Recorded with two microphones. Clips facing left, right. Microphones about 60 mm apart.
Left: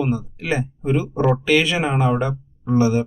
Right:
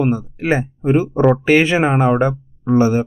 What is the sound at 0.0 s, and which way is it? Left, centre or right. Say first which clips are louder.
Speech: right 5 dB; right.